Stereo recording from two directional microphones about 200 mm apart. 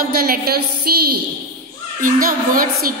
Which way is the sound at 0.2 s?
50° right (ahead or behind).